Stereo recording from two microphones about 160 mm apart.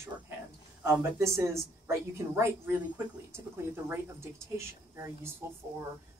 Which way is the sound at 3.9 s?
15° right (ahead or behind).